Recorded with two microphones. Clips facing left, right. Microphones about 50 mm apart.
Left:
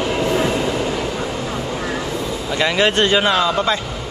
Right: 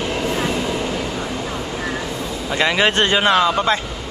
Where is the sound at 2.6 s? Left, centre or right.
Centre.